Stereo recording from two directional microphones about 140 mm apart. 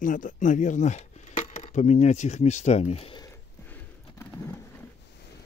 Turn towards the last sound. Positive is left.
turn(degrees=15)  # may be behind; listen again after turning